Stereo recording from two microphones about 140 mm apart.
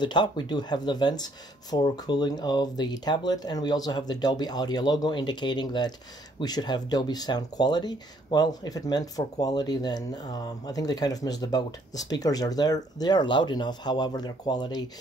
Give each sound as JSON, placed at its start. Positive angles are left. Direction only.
{"t": 0.0, "sound": "speech", "side_deg": 30}